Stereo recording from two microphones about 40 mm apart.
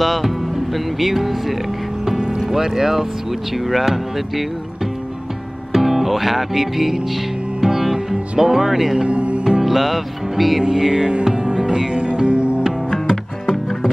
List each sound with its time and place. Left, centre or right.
0.0 s music: centre
0.9 s speech: centre
2.0 s vehicle: centre
2.5 s speech: centre
5.7 s music: centre
8.9 s music: right
9.4 s music: centre
9.7 s speech: centre
10.6 s music: centre
13.1 s music: centre